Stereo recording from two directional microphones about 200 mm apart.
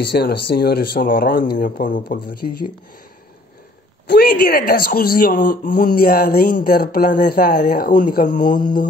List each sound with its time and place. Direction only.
0.1 s speech: 55° left (ahead or behind)
4.1 s speech: 50° left (ahead or behind)